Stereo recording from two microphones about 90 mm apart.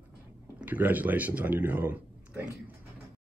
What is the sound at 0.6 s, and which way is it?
Speech, 20° right (ahead or behind).